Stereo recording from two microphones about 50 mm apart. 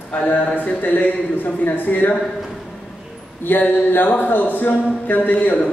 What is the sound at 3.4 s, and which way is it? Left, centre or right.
A man's voice, left.